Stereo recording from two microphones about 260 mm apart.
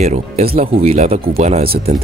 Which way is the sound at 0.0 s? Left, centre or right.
Right.